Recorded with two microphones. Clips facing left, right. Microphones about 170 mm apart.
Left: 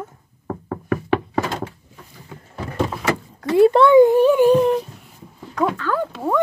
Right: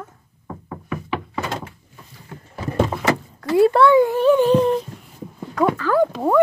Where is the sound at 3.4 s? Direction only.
20° left (ahead or behind).